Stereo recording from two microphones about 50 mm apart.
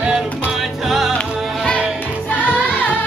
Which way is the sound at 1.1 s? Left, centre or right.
Left.